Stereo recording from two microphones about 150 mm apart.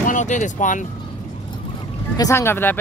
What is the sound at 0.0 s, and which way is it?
Speech, 55° left (ahead or behind).